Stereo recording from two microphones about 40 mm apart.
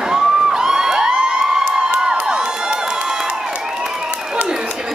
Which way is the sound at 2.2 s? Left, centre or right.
Centre.